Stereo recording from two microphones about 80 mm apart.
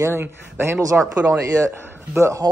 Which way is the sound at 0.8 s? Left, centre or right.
Right.